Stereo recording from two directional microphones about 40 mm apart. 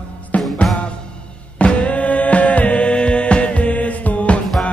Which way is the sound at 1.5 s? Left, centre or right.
Left.